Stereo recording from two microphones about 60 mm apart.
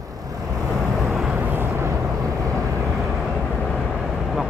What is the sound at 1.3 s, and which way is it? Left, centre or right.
Vehicle, right.